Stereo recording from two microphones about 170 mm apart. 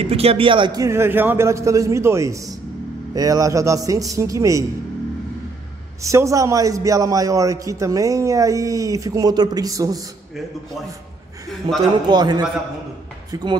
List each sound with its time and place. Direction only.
0.0 s a man's voice: 35° right (ahead or behind); by 4.6 s 20° right (ahead or behind)
6.0 s a man's voice: 20° right (ahead or behind)
12.1 s a man's voice: 25° right (ahead or behind)